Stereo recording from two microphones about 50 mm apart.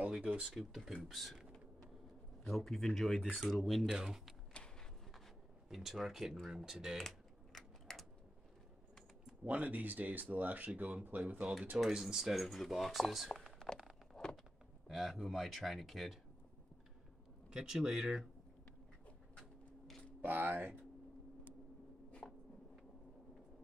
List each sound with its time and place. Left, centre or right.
0.1 s speech: centre
0.6 s speech: centre
2.4 s speech: centre
5.7 s speech: centre
7.0 s typing: centre
9.4 s speech: right
11.9 s speech: centre
14.2 s a sound: centre
14.9 s speech: centre
17.5 s speech: centre
20.2 s speech: right
22.2 s writing: centre